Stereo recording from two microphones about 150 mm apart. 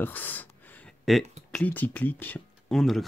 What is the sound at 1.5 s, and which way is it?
Speech, 10° left (ahead or behind).